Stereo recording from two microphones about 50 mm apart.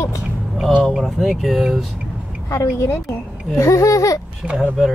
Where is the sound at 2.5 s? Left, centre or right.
Left.